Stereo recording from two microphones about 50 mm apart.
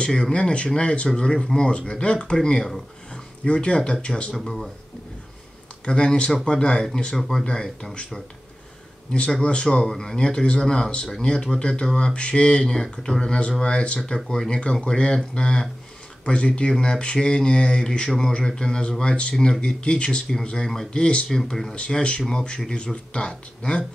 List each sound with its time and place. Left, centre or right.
0.1 s a man's voice: centre
4.3 s speech: centre
5.9 s a man's voice: centre
9.1 s a man's voice: left
20.6 s a man's voice: centre
20.9 s speech: left
21.3 s a man's voice: centre
21.7 s a man's voice: centre